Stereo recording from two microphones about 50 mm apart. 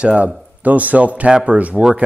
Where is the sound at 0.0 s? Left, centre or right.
Right.